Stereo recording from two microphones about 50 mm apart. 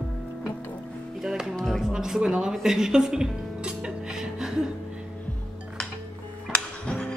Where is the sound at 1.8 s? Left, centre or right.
Centre.